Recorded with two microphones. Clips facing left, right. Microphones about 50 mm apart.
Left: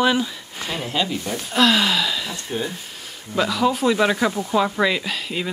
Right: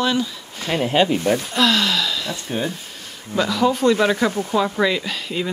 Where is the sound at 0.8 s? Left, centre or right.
Right.